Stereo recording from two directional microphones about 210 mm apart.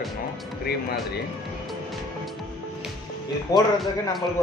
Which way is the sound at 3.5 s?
Centre (ahead or behind).